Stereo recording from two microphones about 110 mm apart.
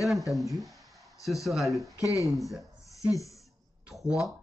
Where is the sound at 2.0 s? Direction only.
30° left (ahead or behind).